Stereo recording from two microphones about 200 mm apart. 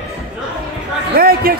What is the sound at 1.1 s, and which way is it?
Speech, 50° right (ahead or behind).